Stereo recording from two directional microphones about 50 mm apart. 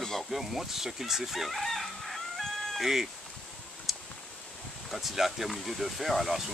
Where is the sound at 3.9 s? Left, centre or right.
Centre.